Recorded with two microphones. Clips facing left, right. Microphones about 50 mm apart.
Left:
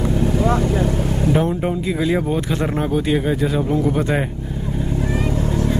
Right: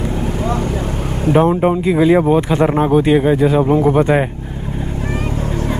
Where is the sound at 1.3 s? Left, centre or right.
Right.